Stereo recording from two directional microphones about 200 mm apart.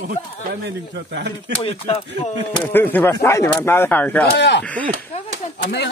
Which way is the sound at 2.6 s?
10° left (ahead or behind).